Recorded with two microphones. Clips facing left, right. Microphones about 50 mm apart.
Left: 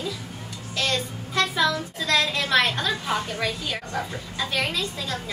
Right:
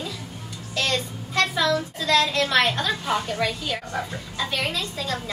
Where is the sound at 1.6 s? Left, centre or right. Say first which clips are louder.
Right 1 dB; centre.